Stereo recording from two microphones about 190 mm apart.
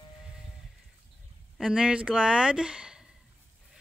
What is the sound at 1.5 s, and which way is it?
Speech, centre (ahead or behind).